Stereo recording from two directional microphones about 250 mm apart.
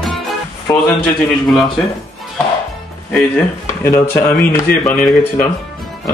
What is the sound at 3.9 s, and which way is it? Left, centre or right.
Speech, centre.